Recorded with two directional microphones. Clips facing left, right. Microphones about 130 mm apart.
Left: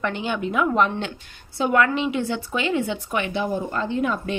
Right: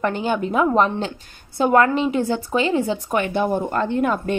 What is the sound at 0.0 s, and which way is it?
A woman's voice, 40° right (ahead or behind).